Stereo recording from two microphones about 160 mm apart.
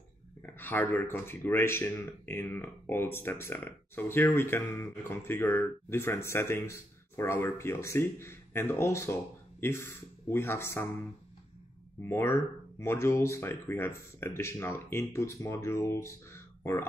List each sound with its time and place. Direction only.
0.4 s speech: 10° left (ahead or behind)
12.0 s speech: 15° left (ahead or behind)